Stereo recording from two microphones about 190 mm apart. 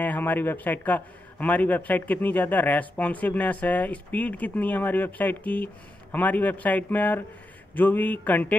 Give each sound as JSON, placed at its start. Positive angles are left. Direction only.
{"t": 0.0, "sound": "a man's voice", "side_deg": 10}